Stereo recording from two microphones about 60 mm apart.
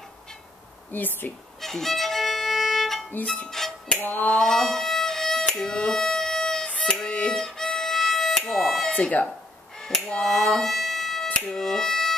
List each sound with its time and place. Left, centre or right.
0.9 s speech: left
1.6 s violin: centre
3.4 s music: centre
4.0 s speech: left
4.3 s music: centre
5.4 s music: centre
7.0 s violin: centre
7.3 s music: centre
8.5 s a sound: centre
8.9 s speech: left
9.8 s music: centre
11.5 s speech: centre